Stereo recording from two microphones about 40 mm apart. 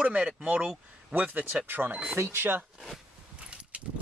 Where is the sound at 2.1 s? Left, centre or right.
Right.